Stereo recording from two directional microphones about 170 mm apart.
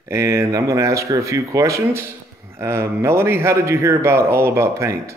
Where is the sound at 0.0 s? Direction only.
15° right (ahead or behind).